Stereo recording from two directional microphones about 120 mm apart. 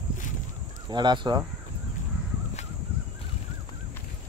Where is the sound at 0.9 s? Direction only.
40° right (ahead or behind).